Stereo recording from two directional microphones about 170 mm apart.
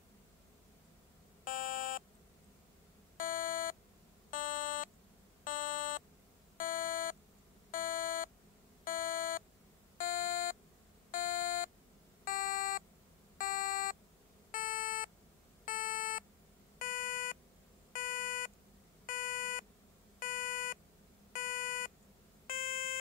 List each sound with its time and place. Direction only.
1.4 s buzzer: 55° left (ahead or behind)
3.2 s beep: 55° left (ahead or behind)